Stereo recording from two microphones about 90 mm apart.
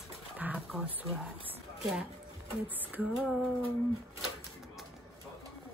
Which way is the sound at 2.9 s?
15° right (ahead or behind).